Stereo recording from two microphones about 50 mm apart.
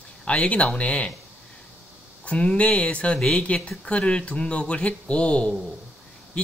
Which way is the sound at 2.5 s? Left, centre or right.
Left.